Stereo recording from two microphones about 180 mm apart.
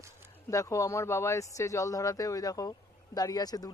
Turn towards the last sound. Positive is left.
turn(degrees=20)  # may be behind; listen again after turning